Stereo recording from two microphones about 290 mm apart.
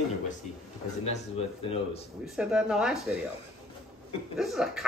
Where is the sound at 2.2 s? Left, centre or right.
Centre.